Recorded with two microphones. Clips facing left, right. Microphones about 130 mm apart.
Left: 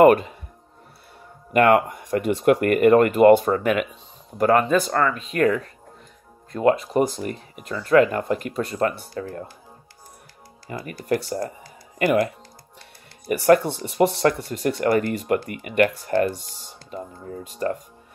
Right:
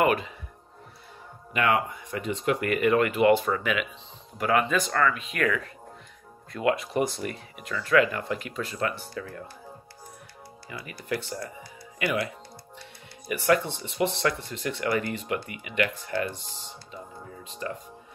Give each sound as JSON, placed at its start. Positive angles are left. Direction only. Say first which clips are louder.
{"t": 0.0, "sound": "speech", "louder": "left 10 dB", "side_deg": 45}
{"t": 1.5, "sound": "speech", "louder": "left 8 dB", "side_deg": 50}
{"t": 10.7, "sound": "speech", "louder": "left 8 dB", "side_deg": 45}
{"t": 13.3, "sound": "speech", "louder": "left 7 dB", "side_deg": 45}